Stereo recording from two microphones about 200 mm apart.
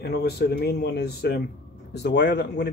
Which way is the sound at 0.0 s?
50° left (ahead or behind).